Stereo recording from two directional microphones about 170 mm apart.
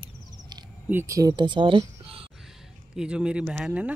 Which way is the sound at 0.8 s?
15° right (ahead or behind).